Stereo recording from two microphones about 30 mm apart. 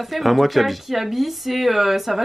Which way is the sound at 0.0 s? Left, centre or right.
Centre.